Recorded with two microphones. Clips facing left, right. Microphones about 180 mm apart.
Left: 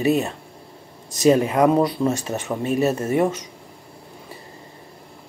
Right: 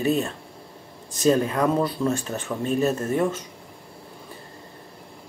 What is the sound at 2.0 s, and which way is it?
Speech, 35° left (ahead or behind).